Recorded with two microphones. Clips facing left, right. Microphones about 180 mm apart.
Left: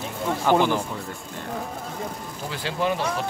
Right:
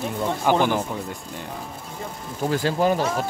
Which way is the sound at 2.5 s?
45° right (ahead or behind).